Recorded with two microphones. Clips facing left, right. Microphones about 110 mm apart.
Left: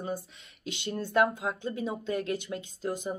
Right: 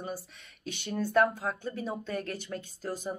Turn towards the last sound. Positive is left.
turn(degrees=20)  # may be behind; listen again after turning